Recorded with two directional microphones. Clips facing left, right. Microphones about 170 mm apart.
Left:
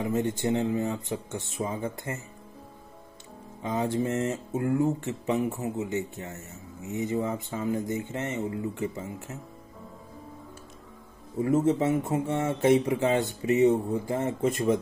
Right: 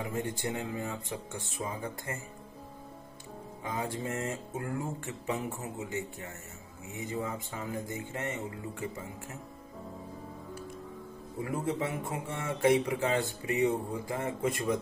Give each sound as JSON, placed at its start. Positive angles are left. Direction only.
{"t": 0.0, "sound": "a man's voice", "side_deg": 20}
{"t": 3.6, "sound": "a man's voice", "side_deg": 20}
{"t": 11.4, "sound": "a man's voice", "side_deg": 25}